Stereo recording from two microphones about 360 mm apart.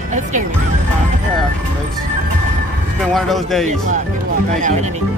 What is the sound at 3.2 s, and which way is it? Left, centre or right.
Music, centre.